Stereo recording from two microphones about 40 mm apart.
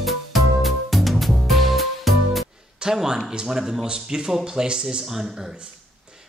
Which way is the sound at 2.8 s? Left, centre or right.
Centre.